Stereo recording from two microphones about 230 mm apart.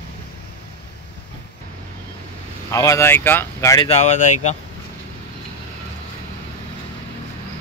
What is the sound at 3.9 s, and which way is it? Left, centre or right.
Speech, left.